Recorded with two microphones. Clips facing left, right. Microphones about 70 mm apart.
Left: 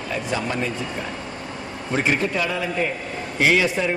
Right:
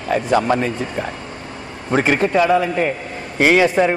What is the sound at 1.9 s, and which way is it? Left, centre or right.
A man's voice, right.